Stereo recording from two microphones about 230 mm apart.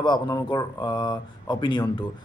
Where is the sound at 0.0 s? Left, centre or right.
Centre.